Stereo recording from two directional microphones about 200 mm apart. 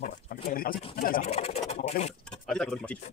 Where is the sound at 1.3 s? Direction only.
30° left (ahead or behind).